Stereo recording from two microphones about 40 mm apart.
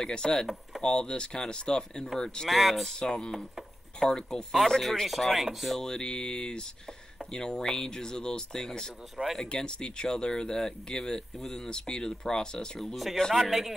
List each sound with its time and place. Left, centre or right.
0.0 s speech: centre
0.8 s a sound: left
2.1 s speech: centre
2.5 s speech: centre
3.0 s a sound: centre
4.0 s speech: centre
5.8 s a sound: centre
7.2 s speech: centre
9.1 s speech: centre
9.4 s speech: centre
12.9 s speech: centre